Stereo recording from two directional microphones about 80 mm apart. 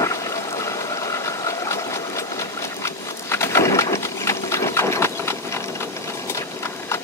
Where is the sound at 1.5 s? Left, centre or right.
Left.